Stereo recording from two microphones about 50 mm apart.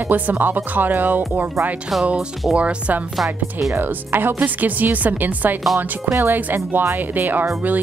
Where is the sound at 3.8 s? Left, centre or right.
Right.